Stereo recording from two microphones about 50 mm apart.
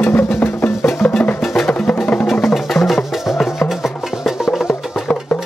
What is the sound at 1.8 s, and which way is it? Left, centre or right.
Music, left.